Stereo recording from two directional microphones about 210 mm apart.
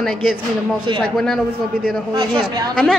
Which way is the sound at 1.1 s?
Centre (ahead or behind).